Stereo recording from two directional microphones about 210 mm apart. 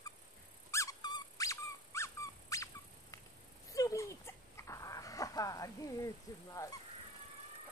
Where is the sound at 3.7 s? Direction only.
15° left (ahead or behind).